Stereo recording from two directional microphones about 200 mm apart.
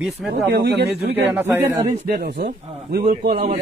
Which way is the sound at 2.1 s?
55° right (ahead or behind).